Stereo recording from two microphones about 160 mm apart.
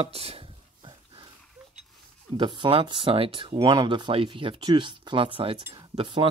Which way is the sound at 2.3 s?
30° right (ahead or behind).